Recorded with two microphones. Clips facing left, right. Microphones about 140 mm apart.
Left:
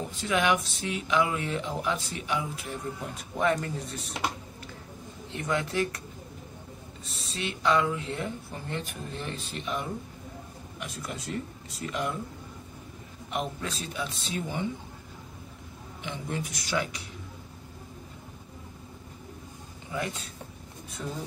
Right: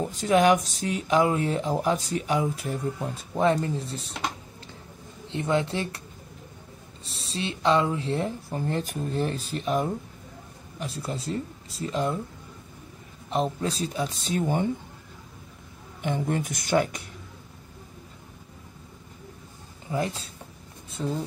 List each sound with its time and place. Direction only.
0.1 s speech: 40° right (ahead or behind)
3.0 s speech: 30° right (ahead or behind)
5.3 s speech: 25° right (ahead or behind)
7.1 s speech: 30° right (ahead or behind)
13.3 s speech: 30° right (ahead or behind)
16.0 s speech: 50° right (ahead or behind)
19.9 s speech: 30° right (ahead or behind)
21.0 s speech: 15° right (ahead or behind)